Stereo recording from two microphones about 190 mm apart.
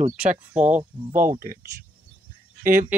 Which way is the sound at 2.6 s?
45° right (ahead or behind).